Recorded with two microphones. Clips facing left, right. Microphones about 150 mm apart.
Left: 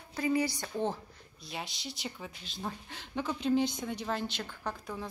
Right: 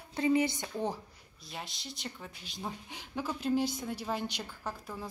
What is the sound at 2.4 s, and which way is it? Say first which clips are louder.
Speech: even; 15° right (ahead or behind).